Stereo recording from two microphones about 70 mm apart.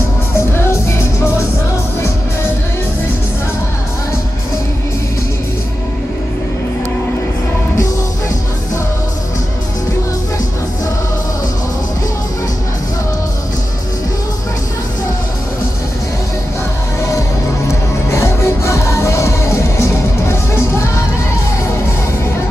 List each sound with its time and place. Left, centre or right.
17.6 s music: left